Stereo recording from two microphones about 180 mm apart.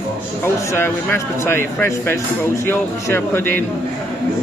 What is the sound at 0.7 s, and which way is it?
Speech, 15° left (ahead or behind).